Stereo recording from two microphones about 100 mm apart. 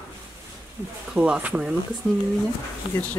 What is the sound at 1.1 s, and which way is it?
Speech, 10° right (ahead or behind).